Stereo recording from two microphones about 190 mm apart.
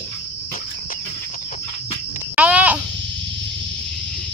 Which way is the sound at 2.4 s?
5° right (ahead or behind).